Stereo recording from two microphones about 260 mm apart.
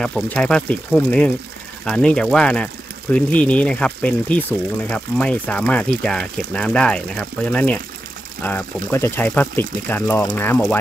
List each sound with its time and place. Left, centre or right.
0.0 s speech: centre